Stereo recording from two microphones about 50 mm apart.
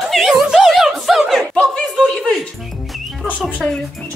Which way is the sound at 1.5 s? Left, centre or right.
Centre.